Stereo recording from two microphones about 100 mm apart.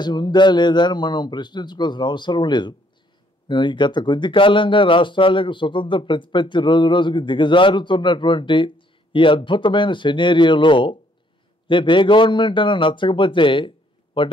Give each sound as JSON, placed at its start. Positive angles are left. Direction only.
{"t": 0.0, "sound": "a man's voice", "side_deg": 45}